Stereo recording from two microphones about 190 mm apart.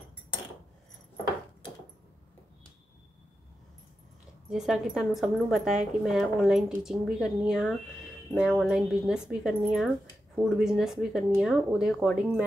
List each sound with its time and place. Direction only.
4.5 s speech: 5° right (ahead or behind)